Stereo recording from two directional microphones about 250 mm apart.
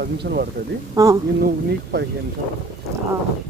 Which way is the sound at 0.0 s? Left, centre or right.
Right.